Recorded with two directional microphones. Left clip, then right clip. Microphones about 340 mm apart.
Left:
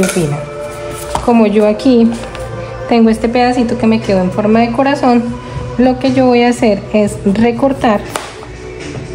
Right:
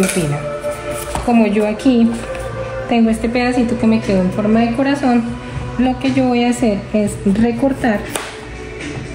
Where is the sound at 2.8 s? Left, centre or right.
Left.